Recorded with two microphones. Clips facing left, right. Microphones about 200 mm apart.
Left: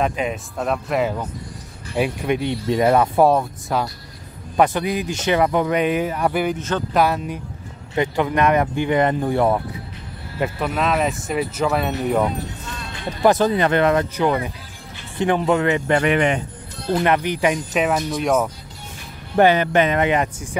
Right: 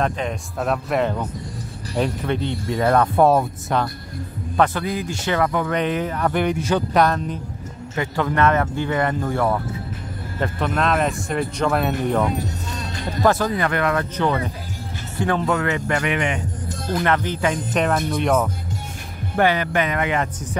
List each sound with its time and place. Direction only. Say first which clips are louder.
0.0 s speech: left 1 dB; 5° left (ahead or behind)
4.6 s a man's voice: left 2 dB; 20° left (ahead or behind)
5.8 s speech: left 2 dB; 10° left (ahead or behind)
10.4 s speech: even; 5° left (ahead or behind)
13.2 s a man's voice: left 3 dB; 20° left (ahead or behind)
14.1 s a man's voice: left 2 dB; 15° left (ahead or behind)
16.0 s speech: left 5 dB; 40° left (ahead or behind)
17.0 s speech: left 2 dB; 15° left (ahead or behind)
19.3 s a man's voice: left 4 dB; 25° left (ahead or behind)